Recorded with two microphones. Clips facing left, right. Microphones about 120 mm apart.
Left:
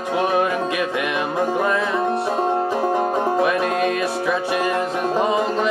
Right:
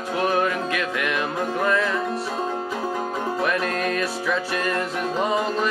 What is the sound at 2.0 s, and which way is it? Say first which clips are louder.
Music: left 6 dB; 60° left (ahead or behind).